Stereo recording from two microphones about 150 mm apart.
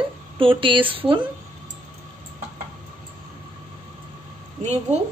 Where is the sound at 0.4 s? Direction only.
35° right (ahead or behind).